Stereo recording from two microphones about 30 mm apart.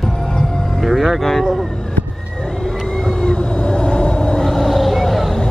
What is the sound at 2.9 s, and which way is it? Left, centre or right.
Cat, left.